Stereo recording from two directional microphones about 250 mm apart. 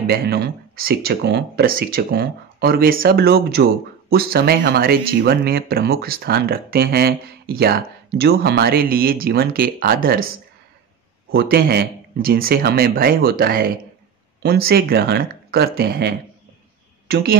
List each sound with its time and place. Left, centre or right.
0.0 s speech: right
11.3 s speech: right